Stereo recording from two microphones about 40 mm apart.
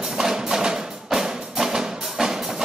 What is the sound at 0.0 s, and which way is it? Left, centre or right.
Music, centre.